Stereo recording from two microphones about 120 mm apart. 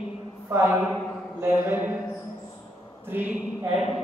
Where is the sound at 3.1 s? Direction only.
15° right (ahead or behind).